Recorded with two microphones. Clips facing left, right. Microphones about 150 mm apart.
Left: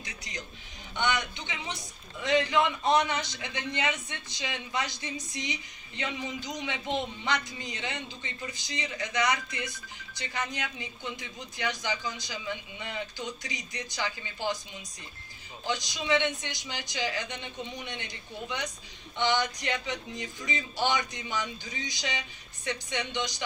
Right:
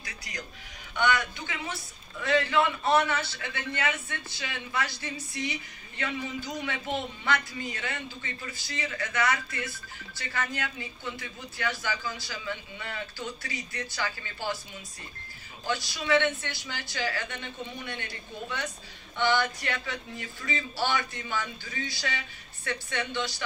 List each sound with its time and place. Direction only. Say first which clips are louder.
0.0 s music: even; 20° left (ahead or behind)
0.9 s a man's voice: right 3 dB; 20° left (ahead or behind)
15.6 s a man's voice: right 1 dB; 15° left (ahead or behind)